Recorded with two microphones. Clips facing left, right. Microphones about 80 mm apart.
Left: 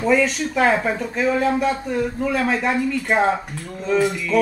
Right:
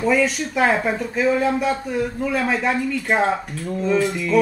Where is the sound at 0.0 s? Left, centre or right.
Centre.